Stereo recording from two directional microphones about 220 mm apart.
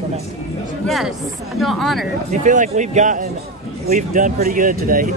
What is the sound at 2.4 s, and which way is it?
Speech, 35° right (ahead or behind).